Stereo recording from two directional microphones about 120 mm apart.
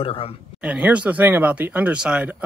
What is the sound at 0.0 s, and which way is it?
Speech, 50° left (ahead or behind).